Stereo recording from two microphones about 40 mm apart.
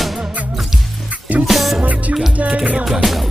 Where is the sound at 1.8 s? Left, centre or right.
Right.